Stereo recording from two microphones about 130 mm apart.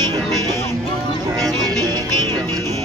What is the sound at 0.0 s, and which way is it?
Music, 30° right (ahead or behind).